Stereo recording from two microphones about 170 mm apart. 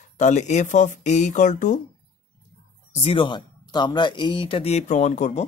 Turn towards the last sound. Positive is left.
turn(degrees=40)  # may be behind; listen again after turning